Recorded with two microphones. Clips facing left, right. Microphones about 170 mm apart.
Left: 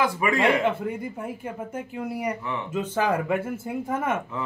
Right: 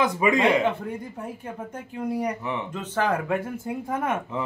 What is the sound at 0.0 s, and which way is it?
Speech, 20° right (ahead or behind).